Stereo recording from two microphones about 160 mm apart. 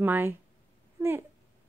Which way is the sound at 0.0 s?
10° right (ahead or behind).